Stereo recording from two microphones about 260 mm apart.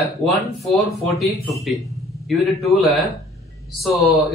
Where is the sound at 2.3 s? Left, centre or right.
Centre.